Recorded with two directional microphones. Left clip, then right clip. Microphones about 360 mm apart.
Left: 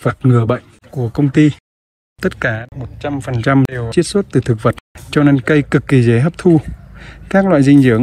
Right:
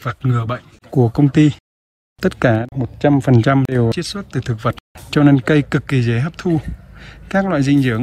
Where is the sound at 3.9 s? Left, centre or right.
Centre.